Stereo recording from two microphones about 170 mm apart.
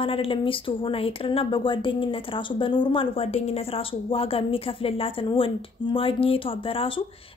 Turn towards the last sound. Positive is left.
turn(degrees=30)  # may be behind; listen again after turning